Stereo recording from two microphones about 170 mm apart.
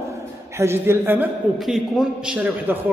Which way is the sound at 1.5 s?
Centre (ahead or behind).